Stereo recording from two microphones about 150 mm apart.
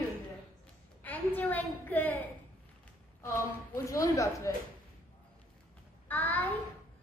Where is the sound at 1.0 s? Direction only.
10° left (ahead or behind).